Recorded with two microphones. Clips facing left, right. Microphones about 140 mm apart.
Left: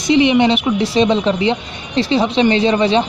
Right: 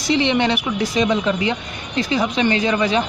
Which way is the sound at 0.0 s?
15° left (ahead or behind).